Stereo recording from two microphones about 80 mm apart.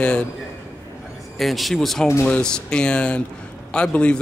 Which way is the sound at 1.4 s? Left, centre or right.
Centre.